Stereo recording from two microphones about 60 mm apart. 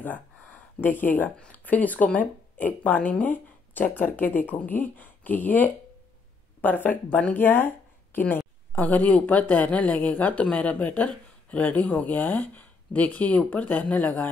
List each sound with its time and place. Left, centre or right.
0.0 s gasp: left
1.4 s speech: left
7.4 s speech: left